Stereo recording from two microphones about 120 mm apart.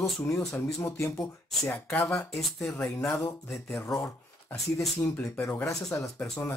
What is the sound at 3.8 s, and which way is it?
Speech, 20° left (ahead or behind).